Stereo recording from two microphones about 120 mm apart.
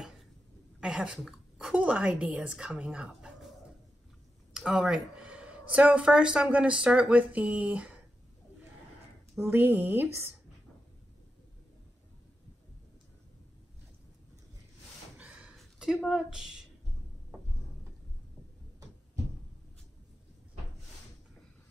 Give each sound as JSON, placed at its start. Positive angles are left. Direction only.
{"t": 0.7, "sound": "a woman's voice", "side_deg": -5}
{"t": 4.6, "sound": "speech", "side_deg": -5}
{"t": 9.4, "sound": "a woman's voice", "side_deg": -15}
{"t": 15.1, "sound": "a sound", "side_deg": -10}
{"t": 15.5, "sound": "speech", "side_deg": 0}